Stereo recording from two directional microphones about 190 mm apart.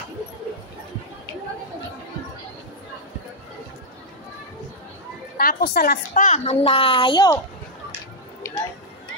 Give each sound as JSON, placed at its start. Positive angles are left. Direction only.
{"t": 5.4, "sound": "a woman's voice", "side_deg": 50}